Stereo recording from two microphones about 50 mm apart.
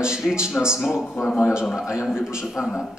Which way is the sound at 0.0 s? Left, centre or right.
Centre.